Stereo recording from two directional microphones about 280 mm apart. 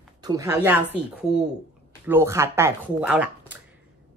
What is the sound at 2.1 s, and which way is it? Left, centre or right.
A woman's voice, centre.